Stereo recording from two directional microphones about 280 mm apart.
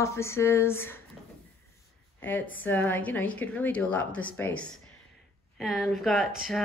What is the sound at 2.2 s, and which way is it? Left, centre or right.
A woman's voice, centre.